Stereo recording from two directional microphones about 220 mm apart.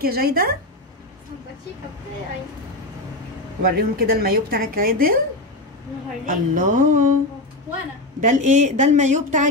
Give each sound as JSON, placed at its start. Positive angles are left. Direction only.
{"t": 0.0, "sound": "a woman's voice", "side_deg": -45}
{"t": 3.6, "sound": "a woman's voice", "side_deg": -45}
{"t": 6.2, "sound": "a woman's voice", "side_deg": -35}
{"t": 8.2, "sound": "a woman's voice", "side_deg": -35}